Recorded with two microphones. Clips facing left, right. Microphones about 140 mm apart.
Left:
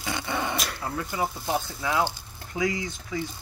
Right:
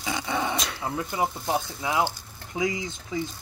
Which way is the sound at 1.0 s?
20° right (ahead or behind).